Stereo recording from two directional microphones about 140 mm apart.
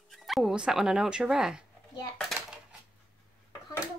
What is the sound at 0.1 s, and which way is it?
Speech, centre (ahead or behind).